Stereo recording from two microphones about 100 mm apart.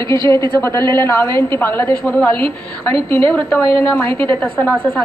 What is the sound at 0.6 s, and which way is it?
A woman's voice, 25° left (ahead or behind).